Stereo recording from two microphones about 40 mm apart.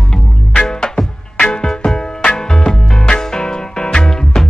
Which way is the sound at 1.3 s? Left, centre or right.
Left.